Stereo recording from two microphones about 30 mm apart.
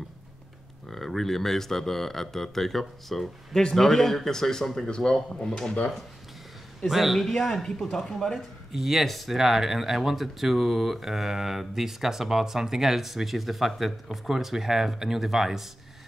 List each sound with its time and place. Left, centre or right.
0.8 s speech: centre
4.8 s speech: left
6.9 s a man's voice: centre
7.2 s speech: centre
8.4 s speech: centre